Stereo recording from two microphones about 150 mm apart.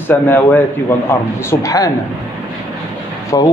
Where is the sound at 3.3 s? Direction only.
25° left (ahead or behind).